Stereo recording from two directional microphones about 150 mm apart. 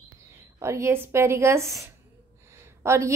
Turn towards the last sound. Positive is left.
turn(degrees=-15)  # may be behind; listen again after turning